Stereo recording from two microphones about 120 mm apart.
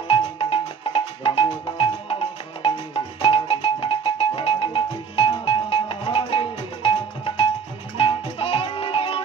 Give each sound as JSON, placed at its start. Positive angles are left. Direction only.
{"t": 0.1, "sound": "music", "side_deg": 50}